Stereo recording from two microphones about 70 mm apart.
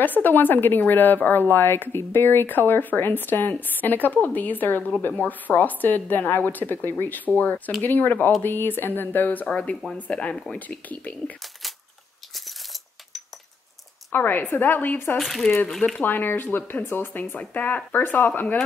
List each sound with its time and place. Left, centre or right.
0.0 s a woman's voice: left
9.5 s a woman's voice: centre
10.3 s speech: centre
10.7 s a woman's voice: centre
14.1 s a woman's voice: left
15.1 s speech: centre
16.0 s a woman's voice: left